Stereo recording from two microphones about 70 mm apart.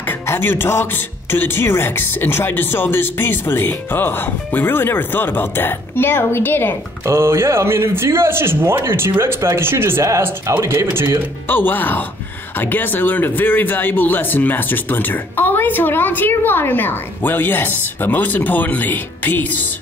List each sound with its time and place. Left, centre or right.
0.3 s speech: left
7.1 s speech: right
10.0 s speech: right
11.4 s speech: left